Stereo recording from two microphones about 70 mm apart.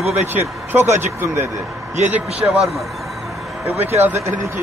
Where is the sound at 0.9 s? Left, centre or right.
Right.